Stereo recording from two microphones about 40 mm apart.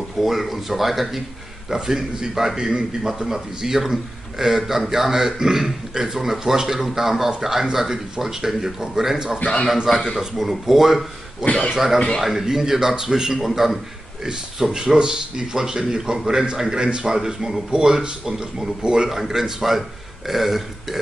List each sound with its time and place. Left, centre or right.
0.2 s a man's voice: centre
9.4 s a man's voice: left
9.8 s a man's voice: centre
19.0 s a man's voice: centre